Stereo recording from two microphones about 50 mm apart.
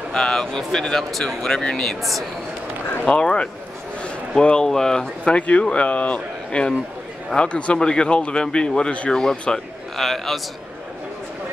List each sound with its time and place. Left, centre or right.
0.1 s speech: centre
3.1 s speech: centre